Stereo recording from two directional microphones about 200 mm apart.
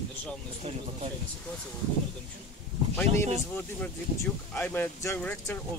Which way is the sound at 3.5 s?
10° left (ahead or behind).